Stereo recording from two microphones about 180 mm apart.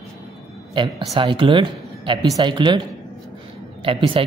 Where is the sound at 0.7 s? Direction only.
25° right (ahead or behind).